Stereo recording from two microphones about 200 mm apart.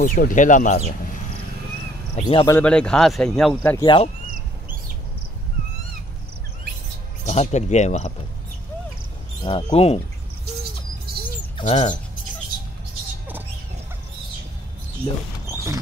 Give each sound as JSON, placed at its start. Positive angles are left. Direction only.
{"t": 0.0, "sound": "speech", "side_deg": 45}
{"t": 2.1, "sound": "speech", "side_deg": 25}
{"t": 2.5, "sound": "speech", "side_deg": 5}
{"t": 3.7, "sound": "speech", "side_deg": 25}
{"t": 7.2, "sound": "speech", "side_deg": 35}
{"t": 9.4, "sound": "speech", "side_deg": 20}
{"t": 11.1, "sound": "bird", "side_deg": -50}
{"t": 11.5, "sound": "speech", "side_deg": 35}